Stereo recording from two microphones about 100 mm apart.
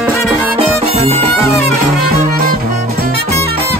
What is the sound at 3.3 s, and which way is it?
Music, 90° right.